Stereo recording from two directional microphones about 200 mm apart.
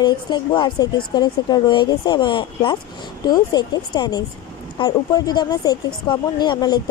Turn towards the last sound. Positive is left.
turn(degrees=20)  # may be behind; listen again after turning